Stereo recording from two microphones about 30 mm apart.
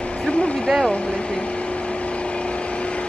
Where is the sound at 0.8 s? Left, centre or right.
Left.